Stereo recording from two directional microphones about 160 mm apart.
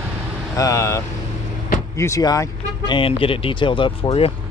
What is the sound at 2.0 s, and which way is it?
Speech, 20° left (ahead or behind).